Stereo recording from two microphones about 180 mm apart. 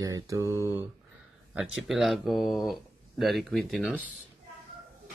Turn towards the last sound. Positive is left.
turn(degrees=0)  # may be behind; listen again after turning